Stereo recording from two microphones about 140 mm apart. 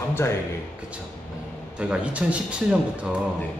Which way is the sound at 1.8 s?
10° right (ahead or behind).